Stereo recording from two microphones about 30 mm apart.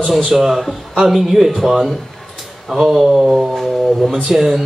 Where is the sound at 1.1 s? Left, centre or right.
Centre.